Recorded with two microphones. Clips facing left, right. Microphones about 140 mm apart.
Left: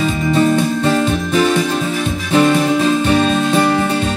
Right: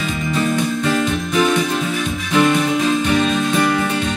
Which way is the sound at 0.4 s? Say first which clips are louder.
Left 5 dB; 35° left (ahead or behind).